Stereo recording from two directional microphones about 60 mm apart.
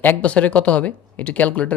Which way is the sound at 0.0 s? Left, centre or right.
Left.